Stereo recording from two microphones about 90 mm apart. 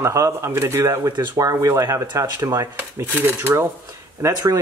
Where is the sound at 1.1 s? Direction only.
45° right (ahead or behind).